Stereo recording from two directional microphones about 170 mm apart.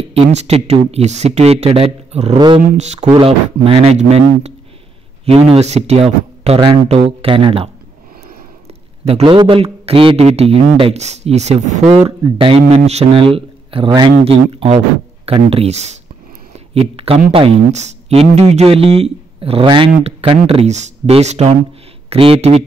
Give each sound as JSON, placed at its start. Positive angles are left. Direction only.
{"t": 0.1, "sound": "a man's voice", "side_deg": -40}
{"t": 2.3, "sound": "speech", "side_deg": -25}
{"t": 2.8, "sound": "a man's voice", "side_deg": -40}
{"t": 9.0, "sound": "a man's voice", "side_deg": -35}
{"t": 16.5, "sound": "a sound", "side_deg": -35}
{"t": 17.3, "sound": "a man's voice", "side_deg": -35}